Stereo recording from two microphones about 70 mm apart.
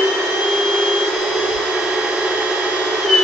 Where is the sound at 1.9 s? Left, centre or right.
Centre.